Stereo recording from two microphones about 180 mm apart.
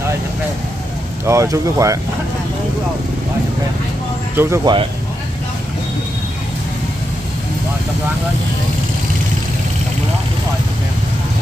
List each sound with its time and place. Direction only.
1.2 s speech: 15° right (ahead or behind)
4.4 s speech: 15° right (ahead or behind)